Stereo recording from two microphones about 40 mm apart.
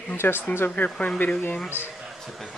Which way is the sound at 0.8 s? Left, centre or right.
Left.